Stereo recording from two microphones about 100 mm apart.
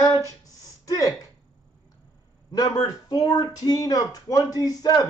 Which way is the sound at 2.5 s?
40° left (ahead or behind).